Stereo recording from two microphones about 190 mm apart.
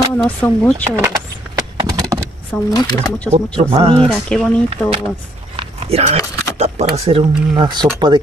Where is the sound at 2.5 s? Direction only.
10° left (ahead or behind).